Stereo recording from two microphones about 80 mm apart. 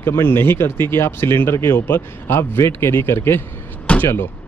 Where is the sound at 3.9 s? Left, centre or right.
Centre.